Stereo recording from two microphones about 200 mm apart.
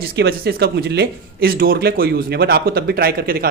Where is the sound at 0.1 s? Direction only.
50° right (ahead or behind).